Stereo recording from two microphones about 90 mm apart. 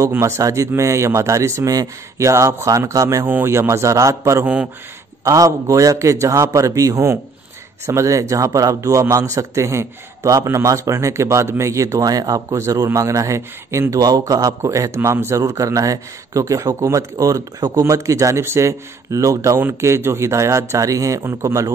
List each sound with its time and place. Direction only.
0.1 s a man's voice: 30° right (ahead or behind)
3.3 s a man's voice: 25° right (ahead or behind)